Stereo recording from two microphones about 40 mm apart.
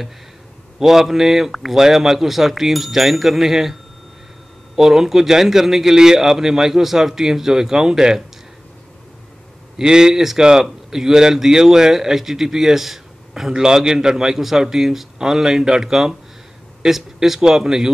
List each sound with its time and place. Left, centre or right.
0.7 s a man's voice: centre
4.7 s a man's voice: centre
9.8 s a man's voice: centre